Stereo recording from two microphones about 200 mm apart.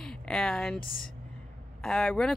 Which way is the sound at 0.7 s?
45° left (ahead or behind).